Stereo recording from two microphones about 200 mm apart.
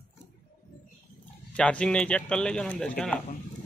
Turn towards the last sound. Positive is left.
turn(degrees=5)  # may be behind; listen again after turning